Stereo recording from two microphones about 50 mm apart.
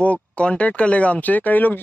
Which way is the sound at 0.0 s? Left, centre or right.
Left.